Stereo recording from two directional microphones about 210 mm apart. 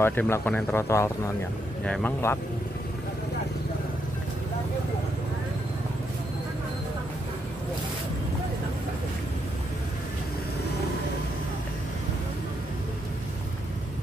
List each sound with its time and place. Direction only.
0.0 s speech: 10° left (ahead or behind)